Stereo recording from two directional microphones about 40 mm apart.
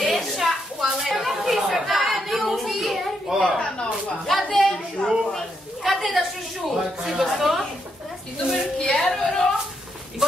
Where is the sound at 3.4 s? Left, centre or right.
Left.